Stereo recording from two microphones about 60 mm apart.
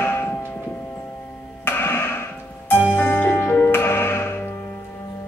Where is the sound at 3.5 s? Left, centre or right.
Left.